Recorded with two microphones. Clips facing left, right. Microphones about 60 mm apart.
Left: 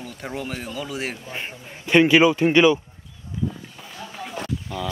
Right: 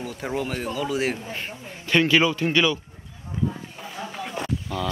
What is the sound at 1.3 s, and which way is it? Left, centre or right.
Speech, centre.